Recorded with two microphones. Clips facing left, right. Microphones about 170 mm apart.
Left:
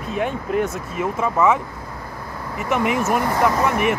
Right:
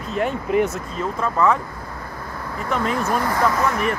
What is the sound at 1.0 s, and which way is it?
Speech, 10° left (ahead or behind).